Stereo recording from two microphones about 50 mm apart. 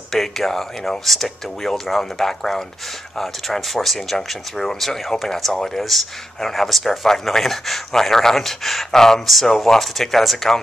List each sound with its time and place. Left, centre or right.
0.1 s speech: centre